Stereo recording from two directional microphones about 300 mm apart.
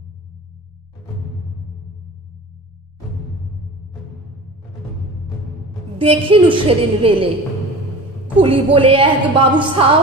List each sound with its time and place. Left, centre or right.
5.9 s a woman's voice: centre
8.4 s a woman's voice: centre